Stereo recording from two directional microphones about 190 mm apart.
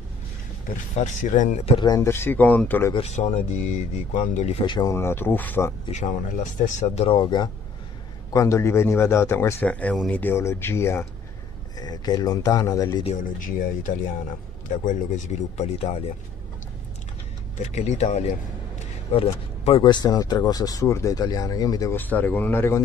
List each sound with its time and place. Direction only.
0.9 s speech: 40° left (ahead or behind)
1.8 s speech: 15° left (ahead or behind)
2.9 s speech: 35° left (ahead or behind); by 5.7 s 10° left (ahead or behind)
5.9 s speech: 35° left (ahead or behind); by 13.0 s 20° left (ahead or behind)
13.0 s speech: 40° left (ahead or behind)
17.6 s speech: 35° left (ahead or behind); by 22.8 s 10° left (ahead or behind)